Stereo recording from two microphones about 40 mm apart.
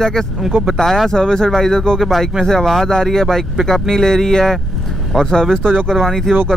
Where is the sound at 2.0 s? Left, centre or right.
Centre.